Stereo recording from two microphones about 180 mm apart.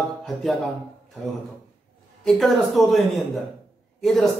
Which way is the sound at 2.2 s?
Centre (ahead or behind).